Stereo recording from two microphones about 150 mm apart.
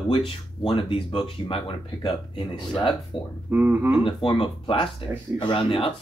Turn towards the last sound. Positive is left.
turn(degrees=35)  # may be behind; listen again after turning